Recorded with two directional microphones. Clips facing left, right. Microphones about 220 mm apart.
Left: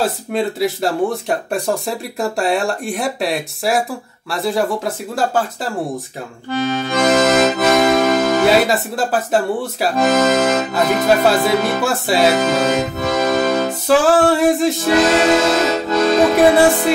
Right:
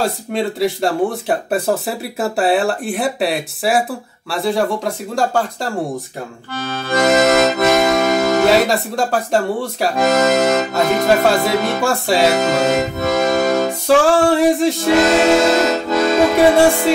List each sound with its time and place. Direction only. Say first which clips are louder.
0.0 s music: even; centre (ahead or behind)
6.5 s accordion: left 7 dB; 20° left (ahead or behind)
6.9 s accordion: right 2 dB; centre (ahead or behind)
11.4 s music: even; centre (ahead or behind)